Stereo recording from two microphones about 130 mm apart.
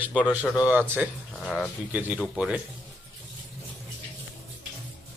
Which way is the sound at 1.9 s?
10° right (ahead or behind).